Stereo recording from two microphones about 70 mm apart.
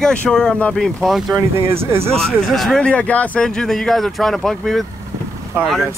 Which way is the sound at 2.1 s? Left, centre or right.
Centre.